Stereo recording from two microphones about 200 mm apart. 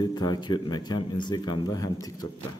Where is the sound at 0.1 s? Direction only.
20° left (ahead or behind).